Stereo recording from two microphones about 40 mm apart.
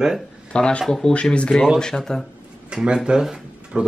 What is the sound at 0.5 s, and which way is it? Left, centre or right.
Speech, left.